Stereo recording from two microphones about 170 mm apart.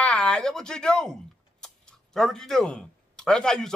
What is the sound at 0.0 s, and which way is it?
A man's voice, 5° left (ahead or behind).